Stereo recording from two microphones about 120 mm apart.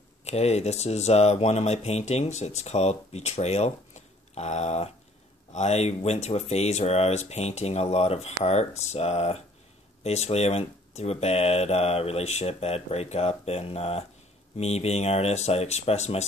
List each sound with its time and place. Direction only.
0.2 s speech: 65° left (ahead or behind)